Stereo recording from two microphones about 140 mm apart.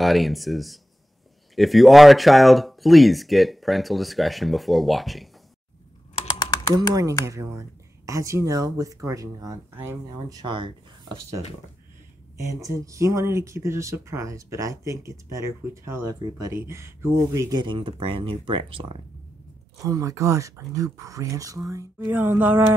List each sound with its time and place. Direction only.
0.0 s speech: centre (ahead or behind)
6.7 s speech: 25° right (ahead or behind)
10.0 s speech: 35° right (ahead or behind)
12.5 s speech: 20° right (ahead or behind); by 18.9 s 40° right (ahead or behind)
19.8 s speech: 25° right (ahead or behind)